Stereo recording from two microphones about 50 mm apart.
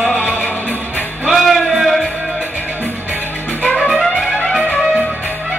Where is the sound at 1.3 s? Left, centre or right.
Centre.